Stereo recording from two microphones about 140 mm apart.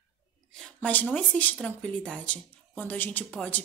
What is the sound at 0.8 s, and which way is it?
Speech, 10° left (ahead or behind).